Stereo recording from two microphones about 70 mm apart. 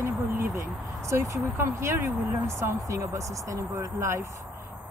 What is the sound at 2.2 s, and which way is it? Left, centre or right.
Speech, right.